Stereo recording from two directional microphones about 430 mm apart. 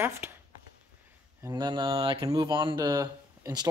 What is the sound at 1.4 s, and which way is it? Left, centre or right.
Speech, centre.